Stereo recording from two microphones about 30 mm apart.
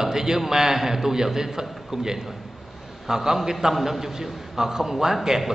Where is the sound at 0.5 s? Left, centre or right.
Centre.